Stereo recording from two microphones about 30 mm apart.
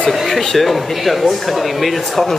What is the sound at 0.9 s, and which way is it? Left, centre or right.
Speech, centre.